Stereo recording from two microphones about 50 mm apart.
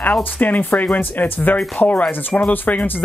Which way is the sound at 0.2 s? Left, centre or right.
Left.